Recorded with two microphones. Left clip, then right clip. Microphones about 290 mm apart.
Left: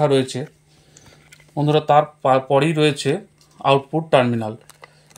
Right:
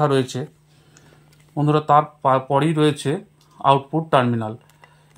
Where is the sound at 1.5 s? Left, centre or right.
Right.